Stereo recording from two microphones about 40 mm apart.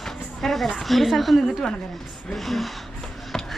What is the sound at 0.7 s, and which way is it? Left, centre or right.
A woman's voice, centre.